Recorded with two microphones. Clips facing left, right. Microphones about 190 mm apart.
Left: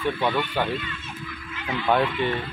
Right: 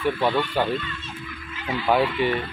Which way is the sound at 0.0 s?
10° right (ahead or behind).